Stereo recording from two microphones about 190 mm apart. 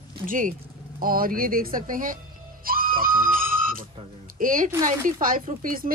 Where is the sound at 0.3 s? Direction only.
45° right (ahead or behind).